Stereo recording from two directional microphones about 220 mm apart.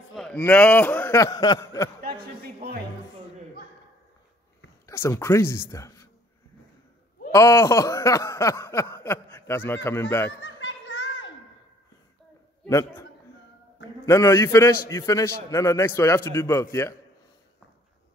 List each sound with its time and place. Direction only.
0.1 s a man's voice: 5° left (ahead or behind)
2.1 s a sound: 45° right (ahead or behind)
4.8 s speech: 10° left (ahead or behind)
7.3 s speech: 15° left (ahead or behind)
10.4 s a sound: 60° left (ahead or behind)
12.6 s speech: 15° left (ahead or behind)
14.0 s speech: 10° left (ahead or behind)